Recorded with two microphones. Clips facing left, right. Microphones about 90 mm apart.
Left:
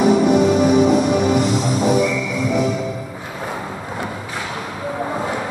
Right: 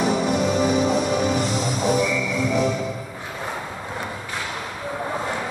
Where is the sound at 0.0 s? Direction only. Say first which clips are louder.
Left 7 dB; centre (ahead or behind).